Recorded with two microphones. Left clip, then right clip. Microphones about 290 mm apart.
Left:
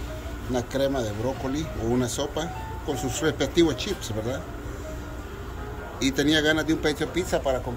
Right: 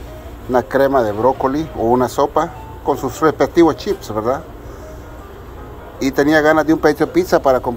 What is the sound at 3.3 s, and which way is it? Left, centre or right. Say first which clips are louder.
Speech: right 9 dB; right.